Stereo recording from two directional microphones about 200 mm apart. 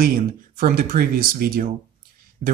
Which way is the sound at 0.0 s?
45° right (ahead or behind).